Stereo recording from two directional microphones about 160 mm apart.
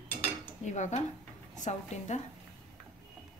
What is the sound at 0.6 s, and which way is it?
Speech, 50° left (ahead or behind).